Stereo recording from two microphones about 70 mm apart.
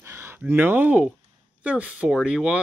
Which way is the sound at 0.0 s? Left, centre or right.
Right.